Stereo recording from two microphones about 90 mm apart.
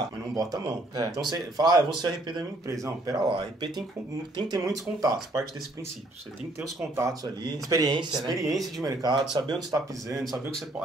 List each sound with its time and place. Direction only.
0.4 s speech: 45° right (ahead or behind)
2.7 s speech: 40° right (ahead or behind)
3.3 s speech: 55° right (ahead or behind)
4.4 s speech: 45° right (ahead or behind)
7.4 s speech: 50° right (ahead or behind)
8.5 s speech: centre (ahead or behind)
8.8 s speech: 50° right (ahead or behind)
10.2 s speech: 5° left (ahead or behind)